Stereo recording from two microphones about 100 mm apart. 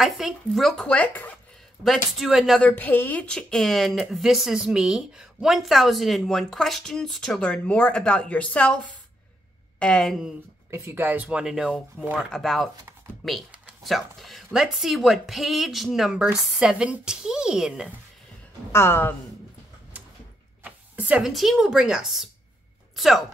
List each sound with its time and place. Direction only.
0.0 s speech: centre (ahead or behind)
0.8 s speech: 15° left (ahead or behind)
1.9 s speech: 5° right (ahead or behind)
2.6 s speech: 15° left (ahead or behind)
9.8 s speech: 10° left (ahead or behind)
10.7 s speech: 25° right (ahead or behind); by 17.9 s 5° right (ahead or behind)
18.7 s a woman's voice: 25° left (ahead or behind)
19.9 s a sound: 15° right (ahead or behind)
21.3 s speech: centre (ahead or behind)